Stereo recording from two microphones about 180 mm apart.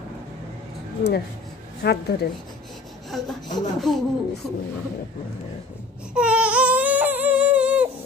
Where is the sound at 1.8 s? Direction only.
65° left (ahead or behind).